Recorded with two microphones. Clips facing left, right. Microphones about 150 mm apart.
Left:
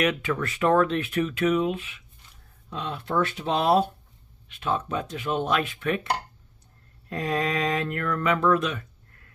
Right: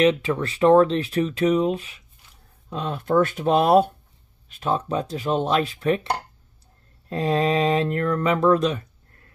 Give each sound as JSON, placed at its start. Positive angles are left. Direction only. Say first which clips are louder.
{"t": 0.0, "sound": "speech", "louder": "right 6 dB", "side_deg": -30}
{"t": 4.5, "sound": "speech", "louder": "right 4 dB", "side_deg": -35}
{"t": 7.1, "sound": "speech", "louder": "right 6 dB", "side_deg": -30}